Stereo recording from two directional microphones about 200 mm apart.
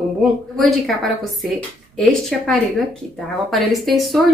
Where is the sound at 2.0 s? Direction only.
5° left (ahead or behind).